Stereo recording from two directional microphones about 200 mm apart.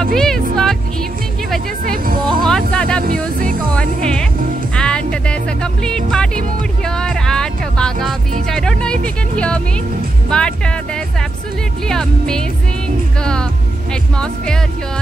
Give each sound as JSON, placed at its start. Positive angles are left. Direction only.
{"t": 0.1, "sound": "music", "side_deg": 0}
{"t": 2.4, "sound": "music", "side_deg": 5}
{"t": 3.0, "sound": "music", "side_deg": -45}
{"t": 3.7, "sound": "music", "side_deg": 5}
{"t": 9.0, "sound": "speech", "side_deg": 5}
{"t": 11.9, "sound": "speech", "side_deg": 5}